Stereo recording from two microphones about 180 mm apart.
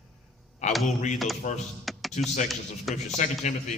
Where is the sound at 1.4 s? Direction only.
45° left (ahead or behind).